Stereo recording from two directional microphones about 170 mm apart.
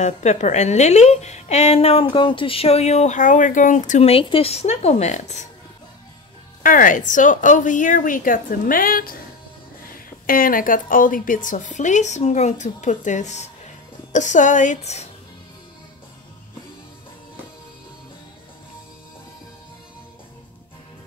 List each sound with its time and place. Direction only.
0.0 s a woman's voice: 45° left (ahead or behind)
6.6 s a woman's voice: 55° left (ahead or behind)
10.2 s a woman's voice: 55° left (ahead or behind); by 15.0 s 40° left (ahead or behind)